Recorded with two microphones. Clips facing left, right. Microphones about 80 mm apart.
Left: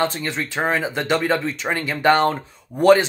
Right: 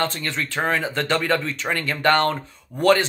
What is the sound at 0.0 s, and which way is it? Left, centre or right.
Speech, centre.